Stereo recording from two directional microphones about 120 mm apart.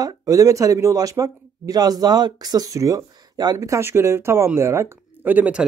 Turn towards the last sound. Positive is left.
turn(degrees=-15)  # may be behind; listen again after turning